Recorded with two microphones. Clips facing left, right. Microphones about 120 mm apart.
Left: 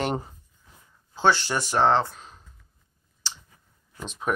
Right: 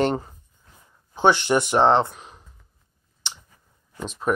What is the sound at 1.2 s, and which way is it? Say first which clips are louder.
Speech: right 4 dB; 20° right (ahead or behind).